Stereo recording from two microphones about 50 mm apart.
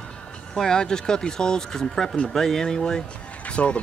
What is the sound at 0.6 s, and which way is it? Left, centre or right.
Speech, centre.